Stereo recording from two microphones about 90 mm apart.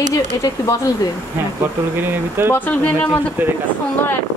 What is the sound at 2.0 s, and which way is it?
Speech, 25° right (ahead or behind).